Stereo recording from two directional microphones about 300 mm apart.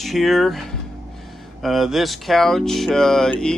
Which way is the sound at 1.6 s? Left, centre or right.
Centre.